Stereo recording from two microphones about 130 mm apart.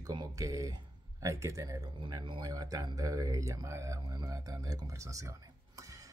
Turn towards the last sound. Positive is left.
turn(degrees=-25)  # may be behind; listen again after turning